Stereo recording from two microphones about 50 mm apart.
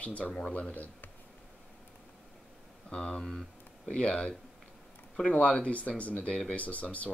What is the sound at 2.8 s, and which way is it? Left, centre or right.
Speech, left.